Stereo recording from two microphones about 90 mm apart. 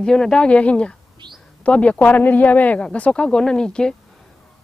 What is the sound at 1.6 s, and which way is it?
Speech, 15° left (ahead or behind).